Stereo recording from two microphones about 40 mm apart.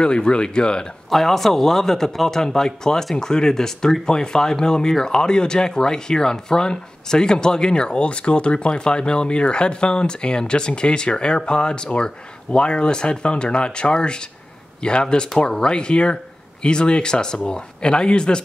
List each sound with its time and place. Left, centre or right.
0.0 s speech: left
1.1 s speech: centre; by 18.4 s left